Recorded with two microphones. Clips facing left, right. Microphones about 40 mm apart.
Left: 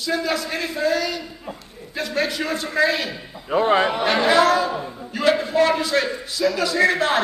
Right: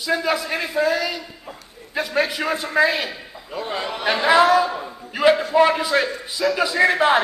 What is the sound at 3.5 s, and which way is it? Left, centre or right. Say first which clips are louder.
Speech: left 9 dB; left.